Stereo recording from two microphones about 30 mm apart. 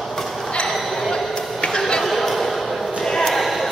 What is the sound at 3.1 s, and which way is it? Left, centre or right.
Basketball bounce, centre.